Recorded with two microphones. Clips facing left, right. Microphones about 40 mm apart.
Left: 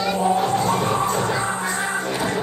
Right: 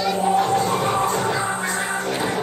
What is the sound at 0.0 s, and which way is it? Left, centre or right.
Music, centre.